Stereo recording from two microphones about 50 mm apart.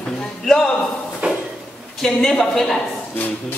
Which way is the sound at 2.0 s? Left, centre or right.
Centre.